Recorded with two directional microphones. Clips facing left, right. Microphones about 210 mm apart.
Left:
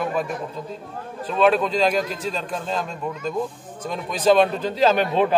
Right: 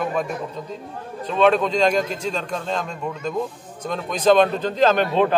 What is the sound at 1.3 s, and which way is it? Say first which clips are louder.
A man's voice: right 1 dB; 5° left (ahead or behind).